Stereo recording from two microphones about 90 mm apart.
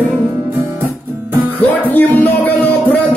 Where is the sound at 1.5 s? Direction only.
20° left (ahead or behind).